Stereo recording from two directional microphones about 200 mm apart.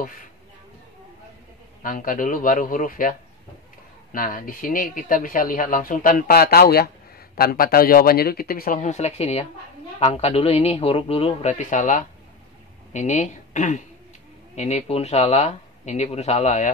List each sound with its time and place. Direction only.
1.8 s speech: 45° left (ahead or behind)